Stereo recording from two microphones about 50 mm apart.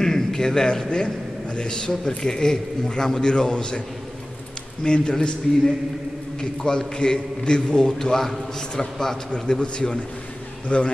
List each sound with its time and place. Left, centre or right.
0.0 s a man's voice: centre
4.8 s a man's voice: centre
6.6 s a man's voice: centre